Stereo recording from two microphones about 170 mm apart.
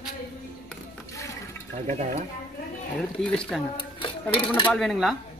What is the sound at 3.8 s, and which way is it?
Dishes, 30° left (ahead or behind).